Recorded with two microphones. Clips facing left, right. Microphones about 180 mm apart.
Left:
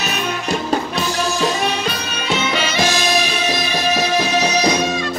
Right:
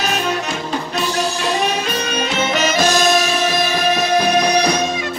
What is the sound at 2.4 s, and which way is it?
Music, 45° right (ahead or behind).